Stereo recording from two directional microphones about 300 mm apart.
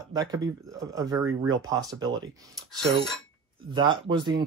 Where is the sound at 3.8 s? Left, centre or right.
Centre.